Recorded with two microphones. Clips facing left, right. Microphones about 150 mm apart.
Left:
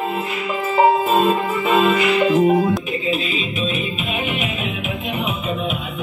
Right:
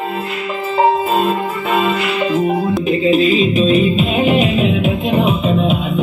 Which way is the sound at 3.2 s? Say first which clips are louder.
Right 11 dB; 40° right (ahead or behind).